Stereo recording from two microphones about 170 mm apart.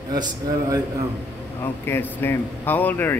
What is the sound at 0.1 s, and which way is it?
Speech, 20° right (ahead or behind).